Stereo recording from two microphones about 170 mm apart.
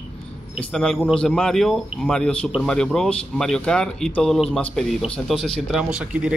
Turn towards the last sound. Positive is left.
turn(degrees=-5)  # may be behind; listen again after turning